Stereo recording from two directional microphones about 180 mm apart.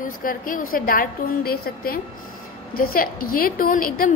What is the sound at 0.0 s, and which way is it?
A woman's voice, 50° left (ahead or behind).